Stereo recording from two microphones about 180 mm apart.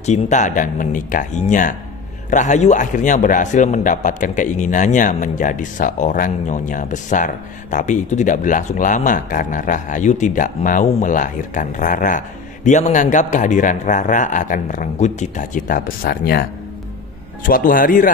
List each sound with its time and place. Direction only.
0.0 s a man's voice: 40° left (ahead or behind)